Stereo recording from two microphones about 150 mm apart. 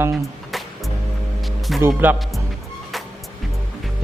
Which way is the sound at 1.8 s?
15° right (ahead or behind).